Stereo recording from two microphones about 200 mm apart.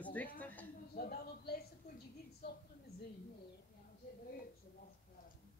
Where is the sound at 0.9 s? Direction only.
50° left (ahead or behind).